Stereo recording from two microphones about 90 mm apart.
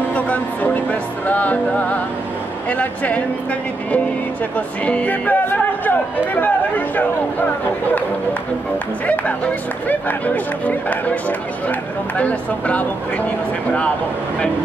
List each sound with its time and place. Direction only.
0.1 s a sound: 15° left (ahead or behind)
1.2 s speech: 15° left (ahead or behind)
4.6 s speech: 15° left (ahead or behind)
9.0 s speech: 15° left (ahead or behind)